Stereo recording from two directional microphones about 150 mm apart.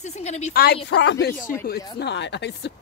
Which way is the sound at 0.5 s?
90° left.